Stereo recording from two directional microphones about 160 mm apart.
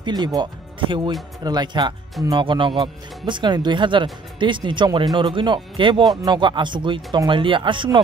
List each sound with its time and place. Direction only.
0.0 s speech: 25° right (ahead or behind)